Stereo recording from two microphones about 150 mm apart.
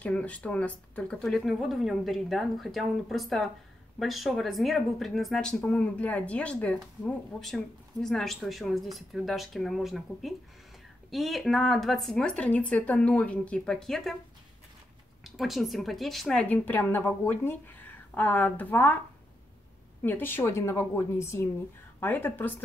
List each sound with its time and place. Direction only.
0.0 s speech: 10° left (ahead or behind)
15.2 s a woman's voice: centre (ahead or behind)
20.0 s a woman's voice: 15° left (ahead or behind)